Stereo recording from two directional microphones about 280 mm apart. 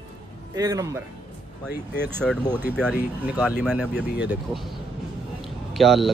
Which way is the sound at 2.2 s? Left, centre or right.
Centre.